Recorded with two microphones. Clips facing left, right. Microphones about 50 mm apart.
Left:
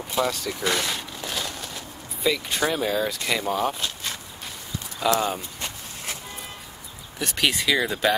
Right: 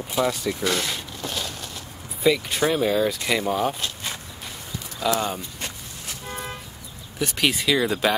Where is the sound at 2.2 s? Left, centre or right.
Centre.